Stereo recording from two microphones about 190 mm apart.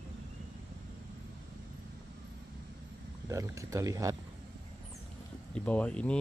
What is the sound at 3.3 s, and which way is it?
Speech, 15° right (ahead or behind).